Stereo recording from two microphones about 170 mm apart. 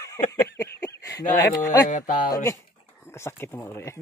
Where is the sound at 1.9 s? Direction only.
50° left (ahead or behind).